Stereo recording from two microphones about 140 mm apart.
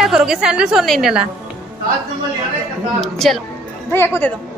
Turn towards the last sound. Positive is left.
turn(degrees=15)  # may be behind; listen again after turning